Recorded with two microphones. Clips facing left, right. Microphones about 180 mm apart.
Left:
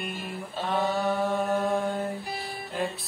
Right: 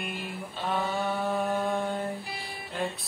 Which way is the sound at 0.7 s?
Centre (ahead or behind).